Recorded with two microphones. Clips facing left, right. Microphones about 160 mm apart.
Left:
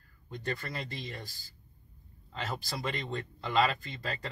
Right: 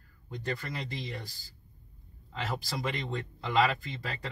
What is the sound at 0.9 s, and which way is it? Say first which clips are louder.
Speech: right 2 dB; 15° right (ahead or behind).